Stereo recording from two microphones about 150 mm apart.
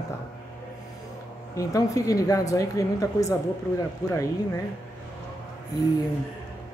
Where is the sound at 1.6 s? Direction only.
20° left (ahead or behind).